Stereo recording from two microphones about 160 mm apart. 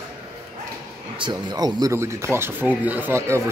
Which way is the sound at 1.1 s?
30° right (ahead or behind).